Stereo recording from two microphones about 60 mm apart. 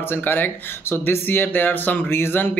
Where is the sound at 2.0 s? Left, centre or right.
Left.